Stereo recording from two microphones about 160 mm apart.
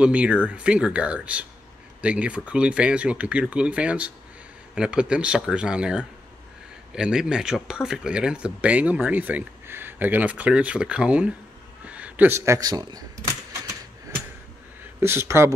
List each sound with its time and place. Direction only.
0.0 s speech: 5° right (ahead or behind); by 13.0 s 25° right (ahead or behind)
15.0 s speech: 15° right (ahead or behind)